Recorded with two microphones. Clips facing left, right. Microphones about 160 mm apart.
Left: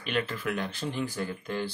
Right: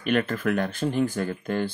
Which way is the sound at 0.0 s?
50° right (ahead or behind).